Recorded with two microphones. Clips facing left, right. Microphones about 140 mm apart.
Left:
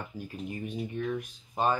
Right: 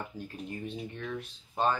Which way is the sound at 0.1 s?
10° left (ahead or behind).